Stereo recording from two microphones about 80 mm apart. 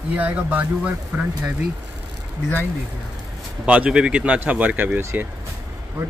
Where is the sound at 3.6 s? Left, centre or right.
Centre.